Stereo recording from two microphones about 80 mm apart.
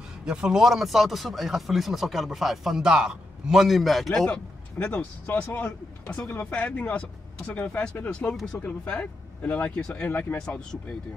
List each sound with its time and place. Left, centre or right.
0.2 s speech: centre